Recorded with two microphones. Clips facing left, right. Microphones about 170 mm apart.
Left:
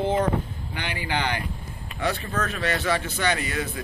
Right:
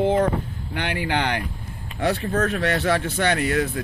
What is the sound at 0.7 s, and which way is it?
Speech, 65° right (ahead or behind).